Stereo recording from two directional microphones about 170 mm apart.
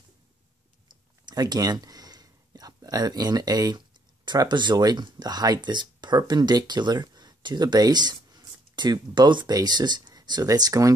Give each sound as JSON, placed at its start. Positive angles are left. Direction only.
{"t": 0.8, "sound": "speech", "side_deg": -25}